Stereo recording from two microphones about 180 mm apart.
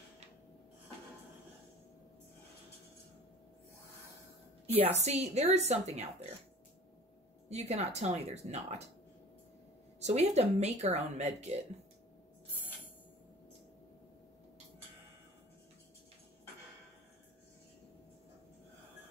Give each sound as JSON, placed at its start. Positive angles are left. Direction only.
{"t": 4.7, "sound": "speech", "side_deg": -35}
{"t": 7.4, "sound": "speech", "side_deg": -35}
{"t": 9.9, "sound": "speech", "side_deg": -35}